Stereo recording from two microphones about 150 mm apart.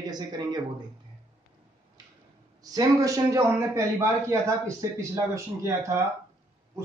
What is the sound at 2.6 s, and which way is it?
A man's voice, 25° right (ahead or behind).